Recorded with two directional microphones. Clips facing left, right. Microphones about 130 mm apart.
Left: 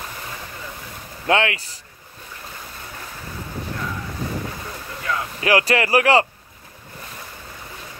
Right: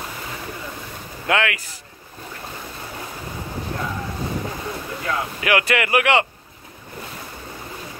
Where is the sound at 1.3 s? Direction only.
30° left (ahead or behind).